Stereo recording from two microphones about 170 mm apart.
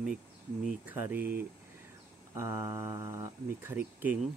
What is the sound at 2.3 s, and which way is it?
Speech, 15° right (ahead or behind).